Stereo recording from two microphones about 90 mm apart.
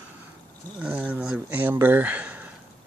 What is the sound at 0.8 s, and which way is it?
Speech, 15° right (ahead or behind).